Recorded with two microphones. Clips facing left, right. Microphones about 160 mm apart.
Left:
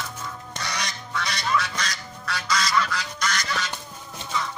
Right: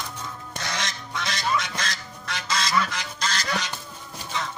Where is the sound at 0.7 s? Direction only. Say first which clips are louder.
Even; 20° right (ahead or behind).